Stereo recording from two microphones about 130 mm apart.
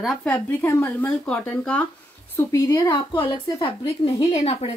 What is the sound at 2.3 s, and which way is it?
Speech, 25° left (ahead or behind).